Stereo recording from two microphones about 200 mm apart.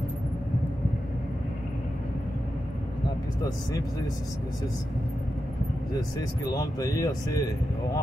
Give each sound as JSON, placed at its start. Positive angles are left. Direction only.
{"t": 6.1, "sound": "speech", "side_deg": 20}